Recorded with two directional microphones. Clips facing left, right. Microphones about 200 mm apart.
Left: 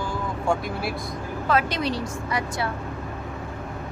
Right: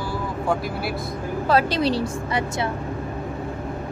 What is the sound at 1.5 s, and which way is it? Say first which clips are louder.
A woman's voice: right 4 dB; 35° right (ahead or behind).